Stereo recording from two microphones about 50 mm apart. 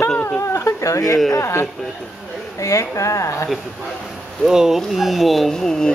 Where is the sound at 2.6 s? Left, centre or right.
Left.